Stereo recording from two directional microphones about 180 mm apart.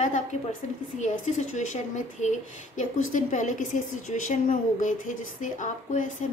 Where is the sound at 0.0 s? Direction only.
40° left (ahead or behind).